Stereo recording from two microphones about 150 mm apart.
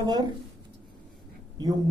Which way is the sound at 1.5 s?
25° right (ahead or behind).